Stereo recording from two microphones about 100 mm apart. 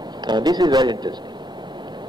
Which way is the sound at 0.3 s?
45° right (ahead or behind).